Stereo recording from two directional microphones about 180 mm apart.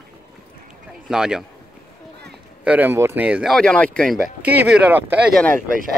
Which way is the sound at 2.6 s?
10° right (ahead or behind).